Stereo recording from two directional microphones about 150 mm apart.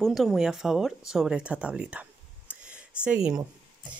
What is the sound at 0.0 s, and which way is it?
Speech, centre (ahead or behind).